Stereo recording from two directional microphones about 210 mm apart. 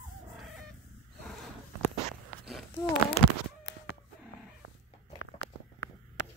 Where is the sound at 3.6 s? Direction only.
55° left (ahead or behind).